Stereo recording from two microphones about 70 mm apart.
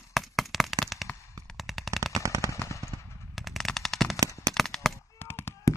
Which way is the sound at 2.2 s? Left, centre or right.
Right.